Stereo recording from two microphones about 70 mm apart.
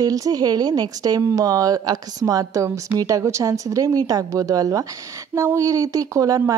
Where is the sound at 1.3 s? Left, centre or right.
Right.